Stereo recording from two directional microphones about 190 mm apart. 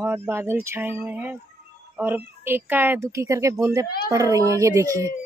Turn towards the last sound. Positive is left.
turn(degrees=-15)  # may be behind; listen again after turning